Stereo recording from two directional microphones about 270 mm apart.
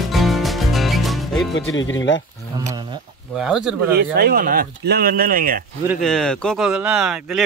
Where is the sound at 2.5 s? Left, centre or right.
Centre.